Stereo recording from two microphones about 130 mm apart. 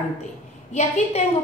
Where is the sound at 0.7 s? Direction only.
60° left (ahead or behind).